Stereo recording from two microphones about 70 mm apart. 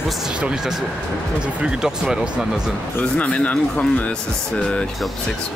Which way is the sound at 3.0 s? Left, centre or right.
Centre.